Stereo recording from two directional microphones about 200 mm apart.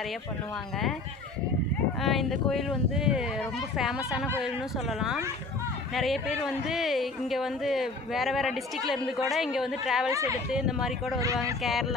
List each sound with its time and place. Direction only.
2.0 s speech: centre (ahead or behind)
10.1 s speech: 15° right (ahead or behind)
10.5 s speech: 5° right (ahead or behind)